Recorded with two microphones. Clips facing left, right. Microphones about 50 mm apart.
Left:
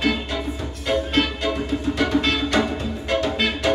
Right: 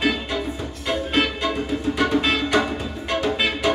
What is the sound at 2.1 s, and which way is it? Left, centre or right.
Music, centre.